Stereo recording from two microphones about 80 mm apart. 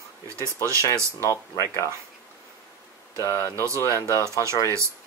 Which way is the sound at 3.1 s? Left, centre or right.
Left.